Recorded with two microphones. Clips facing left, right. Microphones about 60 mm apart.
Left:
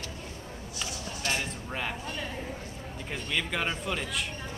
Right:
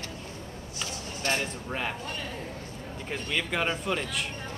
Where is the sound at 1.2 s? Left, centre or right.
Right.